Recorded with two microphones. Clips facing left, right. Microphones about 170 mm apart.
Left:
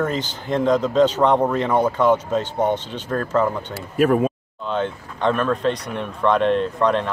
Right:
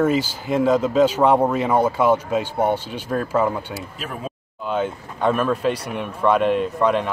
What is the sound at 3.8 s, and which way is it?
Speech, 60° left (ahead or behind).